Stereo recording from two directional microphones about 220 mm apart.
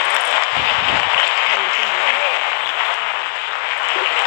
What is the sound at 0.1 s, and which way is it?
Applause, 45° left (ahead or behind).